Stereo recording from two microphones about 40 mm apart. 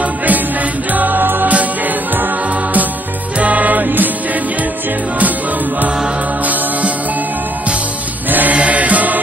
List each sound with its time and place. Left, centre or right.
0.0 s music: right
6.4 s music: right
8.3 s chant: right
8.5 s music: right